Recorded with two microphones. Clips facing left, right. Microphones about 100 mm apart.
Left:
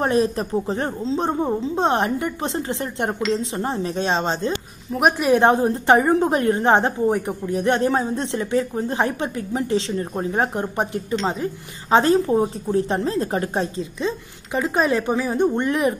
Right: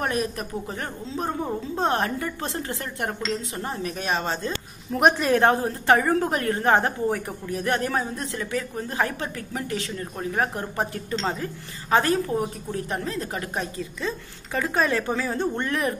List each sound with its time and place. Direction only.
0.0 s a woman's voice: 30° left (ahead or behind)
4.9 s a woman's voice: 5° left (ahead or behind)